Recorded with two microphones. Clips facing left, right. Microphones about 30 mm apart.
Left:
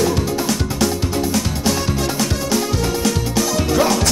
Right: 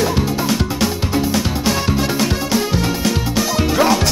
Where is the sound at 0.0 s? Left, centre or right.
Centre.